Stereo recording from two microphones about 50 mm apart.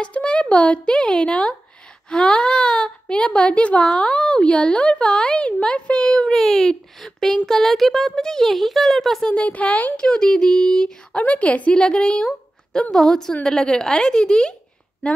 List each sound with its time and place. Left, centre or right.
0.0 s speech: left
6.3 s a child's voice: centre
9.2 s speech: left
9.9 s a woman's voice: centre
11.1 s speech: left
11.7 s a woman's voice: centre